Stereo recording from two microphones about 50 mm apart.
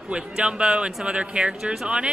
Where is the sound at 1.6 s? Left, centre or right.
Centre.